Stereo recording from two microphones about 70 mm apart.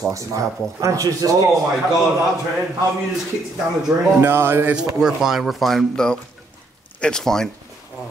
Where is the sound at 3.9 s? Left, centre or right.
Centre.